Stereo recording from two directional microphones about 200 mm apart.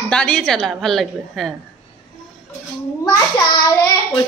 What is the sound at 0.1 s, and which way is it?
A woman's voice, 5° left (ahead or behind).